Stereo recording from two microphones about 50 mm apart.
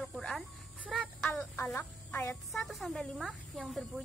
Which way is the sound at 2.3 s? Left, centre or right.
Centre.